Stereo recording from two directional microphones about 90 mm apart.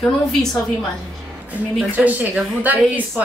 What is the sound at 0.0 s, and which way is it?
Speech, 5° left (ahead or behind).